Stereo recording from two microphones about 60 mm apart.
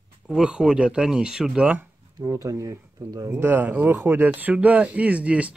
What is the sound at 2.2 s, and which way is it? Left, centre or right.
Speech, right.